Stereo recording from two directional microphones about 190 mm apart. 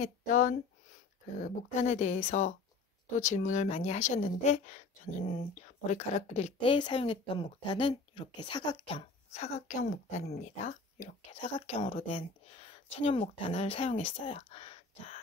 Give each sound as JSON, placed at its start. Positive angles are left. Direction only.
{"t": 0.0, "sound": "speech", "side_deg": 45}